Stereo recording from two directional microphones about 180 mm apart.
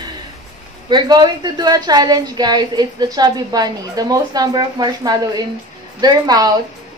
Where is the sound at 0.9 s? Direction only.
25° right (ahead or behind).